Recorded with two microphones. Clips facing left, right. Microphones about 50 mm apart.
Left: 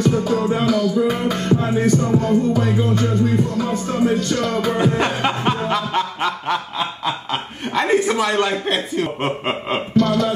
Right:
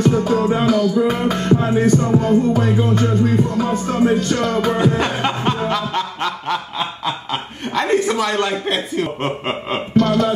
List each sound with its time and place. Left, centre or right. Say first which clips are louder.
0.0 s music: right 2 dB; right
4.7 s speech: right 1 dB; centre
5.7 s a sound: even; centre
7.7 s speech: even; centre
9.9 s music: right 2 dB; right